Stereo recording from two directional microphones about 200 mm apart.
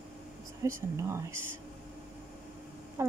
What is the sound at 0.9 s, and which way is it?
Speech, 15° right (ahead or behind).